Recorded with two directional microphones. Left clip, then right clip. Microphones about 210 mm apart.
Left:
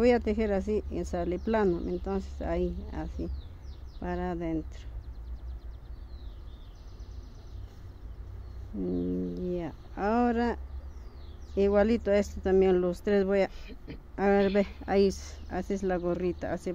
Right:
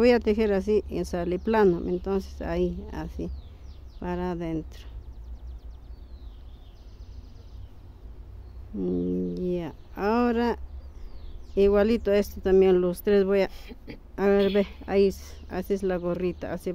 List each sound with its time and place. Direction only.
0.0 s speech: 20° right (ahead or behind)
8.8 s speech: 15° right (ahead or behind)
13.5 s speech: 60° right (ahead or behind)
14.1 s speech: 10° right (ahead or behind)